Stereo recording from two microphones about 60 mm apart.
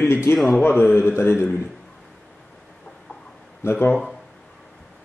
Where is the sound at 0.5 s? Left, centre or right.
Left.